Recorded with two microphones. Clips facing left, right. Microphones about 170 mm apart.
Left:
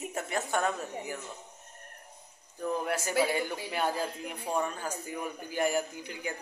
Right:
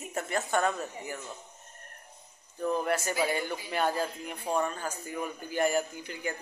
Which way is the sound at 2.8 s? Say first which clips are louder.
Even; 5° left (ahead or behind).